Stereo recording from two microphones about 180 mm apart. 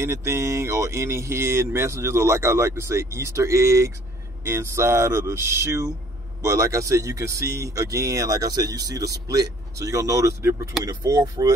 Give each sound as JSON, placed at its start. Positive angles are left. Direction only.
{"t": 0.0, "sound": "speech", "side_deg": -15}